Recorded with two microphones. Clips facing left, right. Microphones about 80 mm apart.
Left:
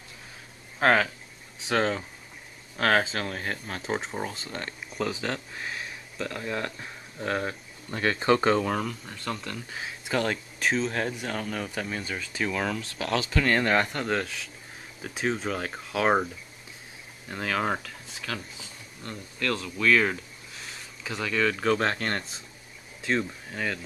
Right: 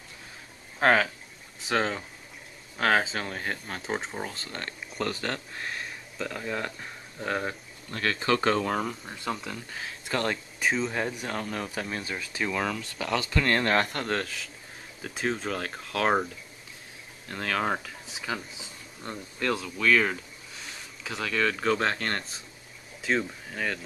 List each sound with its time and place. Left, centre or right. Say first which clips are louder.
0.7 s speech: even; centre
7.9 s speech: left 3 dB; centre
8.5 s speech: left 2 dB; centre
8.7 s speech: right 1 dB; centre
9.7 s speech: left 2 dB; centre
10.2 s speech: even; centre
17.3 s speech: even; centre
18.1 s speech: right 2 dB; centre
19.6 s speech: left 2 dB; centre